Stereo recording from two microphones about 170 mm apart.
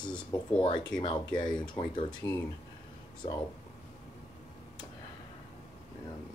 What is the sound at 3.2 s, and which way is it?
Speech, 35° left (ahead or behind).